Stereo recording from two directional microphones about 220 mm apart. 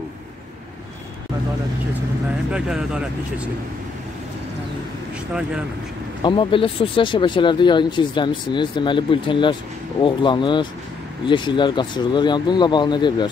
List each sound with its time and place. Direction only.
2.5 s speech: 5° right (ahead or behind)
6.2 s speech: 25° left (ahead or behind)